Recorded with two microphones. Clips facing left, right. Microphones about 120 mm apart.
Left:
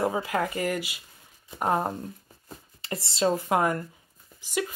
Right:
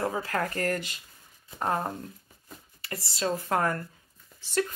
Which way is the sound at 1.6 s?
20° left (ahead or behind).